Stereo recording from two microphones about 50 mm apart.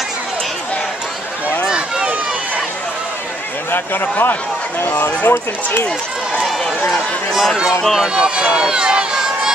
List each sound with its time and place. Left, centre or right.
3.7 s speech: left
6.9 s speech: centre
8.1 s run: centre